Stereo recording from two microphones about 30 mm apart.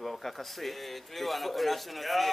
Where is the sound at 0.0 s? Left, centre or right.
Centre.